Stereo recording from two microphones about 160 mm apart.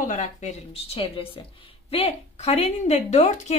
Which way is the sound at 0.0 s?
50° left (ahead or behind).